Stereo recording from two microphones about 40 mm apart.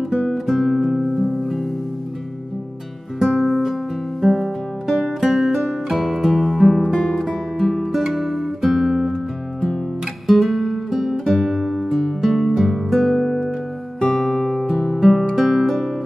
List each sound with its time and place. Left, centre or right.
0.3 s music: centre
3.2 s music: centre
7.0 s music: centre
7.2 s music: centre
13.0 s music: centre